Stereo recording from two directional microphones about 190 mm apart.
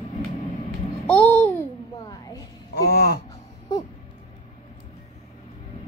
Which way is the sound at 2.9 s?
55° left (ahead or behind).